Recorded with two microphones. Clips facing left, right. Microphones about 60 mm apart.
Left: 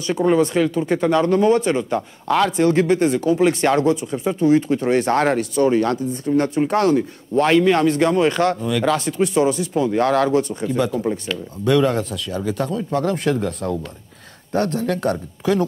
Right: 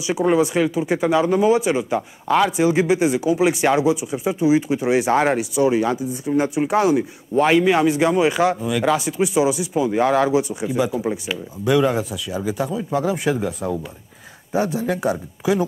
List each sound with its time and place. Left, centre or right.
0.0 s speech: centre